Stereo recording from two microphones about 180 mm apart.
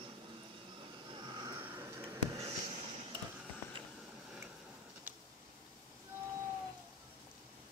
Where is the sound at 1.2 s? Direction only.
25° right (ahead or behind).